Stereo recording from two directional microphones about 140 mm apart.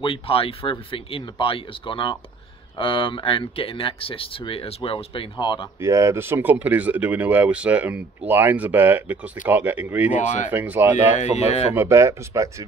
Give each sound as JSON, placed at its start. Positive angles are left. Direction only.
{"t": 0.0, "sound": "speech", "side_deg": 40}
{"t": 5.8, "sound": "speech", "side_deg": -20}
{"t": 10.1, "sound": "speech", "side_deg": 60}
{"t": 10.5, "sound": "speech", "side_deg": -15}
{"t": 11.1, "sound": "speech", "side_deg": 50}
{"t": 11.7, "sound": "speech", "side_deg": -20}